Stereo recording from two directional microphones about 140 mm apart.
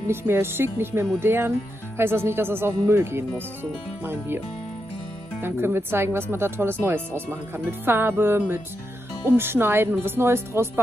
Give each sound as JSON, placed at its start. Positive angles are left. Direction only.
{"t": 0.1, "sound": "speech", "side_deg": -15}
{"t": 5.4, "sound": "speech", "side_deg": -15}